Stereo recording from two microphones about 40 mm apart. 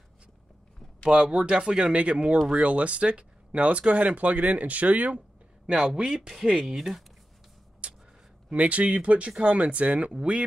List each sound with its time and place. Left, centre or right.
1.1 s speech: right
5.7 s speech: right; by 7.1 s centre
7.8 s a sound: right
8.5 s speech: right